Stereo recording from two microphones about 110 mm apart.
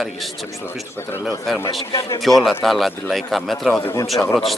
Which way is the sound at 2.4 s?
Centre (ahead or behind).